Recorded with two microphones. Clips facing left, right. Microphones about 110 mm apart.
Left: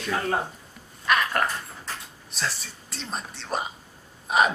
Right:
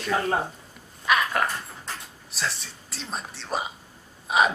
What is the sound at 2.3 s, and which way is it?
Speech, centre (ahead or behind).